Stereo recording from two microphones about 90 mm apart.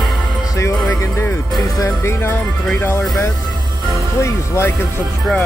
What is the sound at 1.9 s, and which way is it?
Speech, 20° left (ahead or behind).